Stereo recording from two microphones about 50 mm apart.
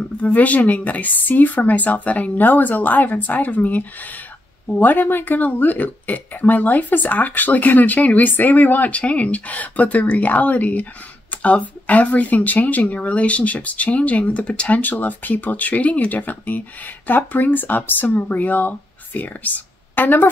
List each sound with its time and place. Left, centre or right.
0.2 s speech: left